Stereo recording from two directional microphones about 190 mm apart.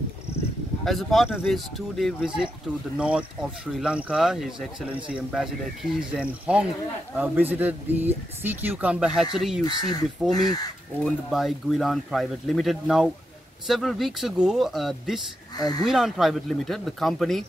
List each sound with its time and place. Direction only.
0.8 s speech: centre (ahead or behind)
15.5 s speech: 20° left (ahead or behind)
15.8 s speech: centre (ahead or behind)